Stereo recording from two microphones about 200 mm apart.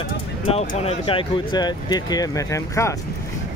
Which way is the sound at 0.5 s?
30° left (ahead or behind).